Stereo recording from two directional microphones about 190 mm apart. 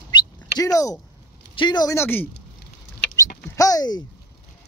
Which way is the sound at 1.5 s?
25° left (ahead or behind).